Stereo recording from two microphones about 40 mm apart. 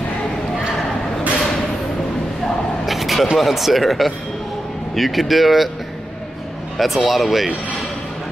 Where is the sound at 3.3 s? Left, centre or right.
Centre.